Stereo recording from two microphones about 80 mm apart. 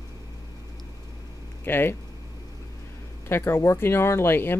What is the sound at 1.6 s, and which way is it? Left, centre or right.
Speech, left.